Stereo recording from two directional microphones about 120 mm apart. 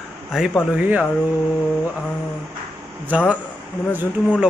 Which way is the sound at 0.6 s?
10° right (ahead or behind).